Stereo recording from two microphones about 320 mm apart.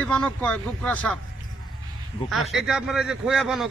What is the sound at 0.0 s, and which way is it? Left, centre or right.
A man's voice, centre.